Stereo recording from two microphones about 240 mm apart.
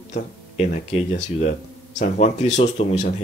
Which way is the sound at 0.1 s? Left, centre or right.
Left.